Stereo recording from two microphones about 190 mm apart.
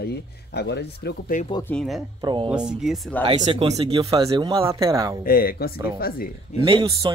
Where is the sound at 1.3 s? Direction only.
45° left (ahead or behind).